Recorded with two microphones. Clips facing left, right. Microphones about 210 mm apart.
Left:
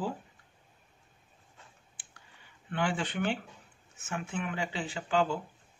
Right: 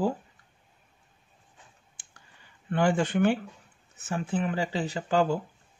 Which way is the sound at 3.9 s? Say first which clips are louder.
Right 6 dB; 35° right (ahead or behind).